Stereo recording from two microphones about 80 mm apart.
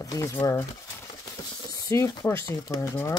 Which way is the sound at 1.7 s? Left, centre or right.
Left.